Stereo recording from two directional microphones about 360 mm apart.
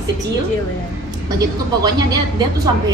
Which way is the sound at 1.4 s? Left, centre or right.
Centre.